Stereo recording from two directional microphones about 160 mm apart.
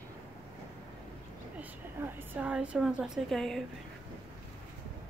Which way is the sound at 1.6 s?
10° right (ahead or behind).